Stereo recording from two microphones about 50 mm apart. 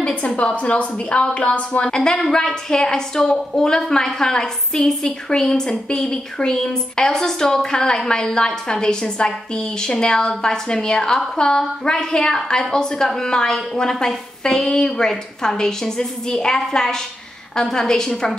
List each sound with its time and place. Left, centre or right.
0.0 s a woman's voice: left
1.9 s a woman's voice: centre